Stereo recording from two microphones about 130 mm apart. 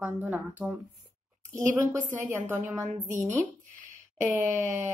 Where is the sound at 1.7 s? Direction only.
20° right (ahead or behind).